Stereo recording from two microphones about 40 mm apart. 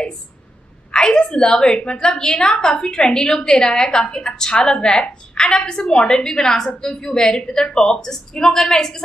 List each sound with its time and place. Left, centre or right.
0.9 s a woman's voice: centre
5.0 s a woman's voice: left